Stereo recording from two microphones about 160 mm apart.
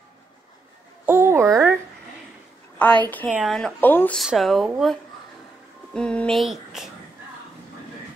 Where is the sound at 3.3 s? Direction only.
Centre (ahead or behind).